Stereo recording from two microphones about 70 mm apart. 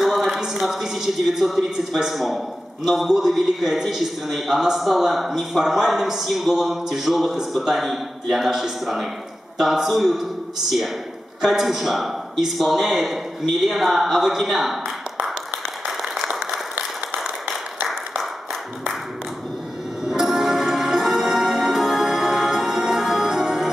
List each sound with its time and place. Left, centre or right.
0.0 s a man's voice: centre
11.4 s a man's voice: centre
16.0 s applause: centre
17.1 s a sound: centre
20.1 s music: centre